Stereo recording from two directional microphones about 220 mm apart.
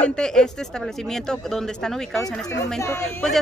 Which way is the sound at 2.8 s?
10° left (ahead or behind).